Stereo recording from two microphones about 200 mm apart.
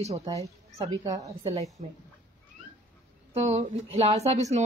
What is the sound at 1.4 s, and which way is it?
Speech, 30° right (ahead or behind).